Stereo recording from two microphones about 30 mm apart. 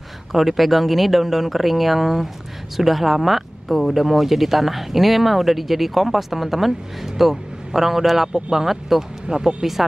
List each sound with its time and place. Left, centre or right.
0.3 s speech: centre
8.3 s speech: right
8.6 s speech: centre
9.3 s speech: right